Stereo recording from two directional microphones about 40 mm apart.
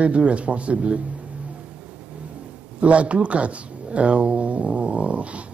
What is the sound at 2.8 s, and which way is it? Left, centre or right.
Speech, right.